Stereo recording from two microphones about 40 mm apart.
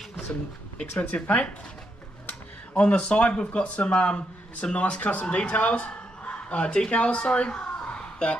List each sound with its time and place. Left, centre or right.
0.7 s speech: left
2.8 s speech: left